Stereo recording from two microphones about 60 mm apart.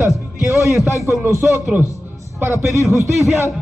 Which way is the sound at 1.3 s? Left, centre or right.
Right.